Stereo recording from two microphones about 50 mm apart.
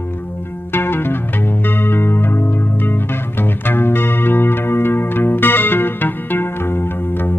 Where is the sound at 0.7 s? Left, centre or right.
Left.